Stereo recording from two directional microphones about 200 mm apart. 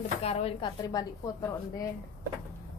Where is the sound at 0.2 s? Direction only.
30° left (ahead or behind).